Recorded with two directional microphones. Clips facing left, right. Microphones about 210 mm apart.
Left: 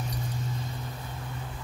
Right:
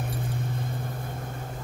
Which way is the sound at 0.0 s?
55° right (ahead or behind).